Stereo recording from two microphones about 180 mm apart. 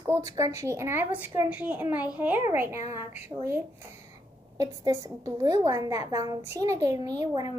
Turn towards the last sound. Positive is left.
turn(degrees=-20)  # may be behind; listen again after turning